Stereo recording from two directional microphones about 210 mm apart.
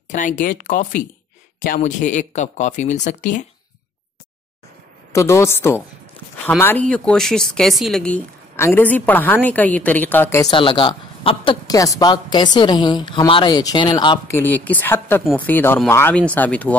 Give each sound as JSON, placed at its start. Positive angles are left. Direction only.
{"t": 0.1, "sound": "speech", "side_deg": 35}
{"t": 5.1, "sound": "speech", "side_deg": 15}
{"t": 10.5, "sound": "a woman's voice", "side_deg": 25}
{"t": 14.4, "sound": "speech", "side_deg": 10}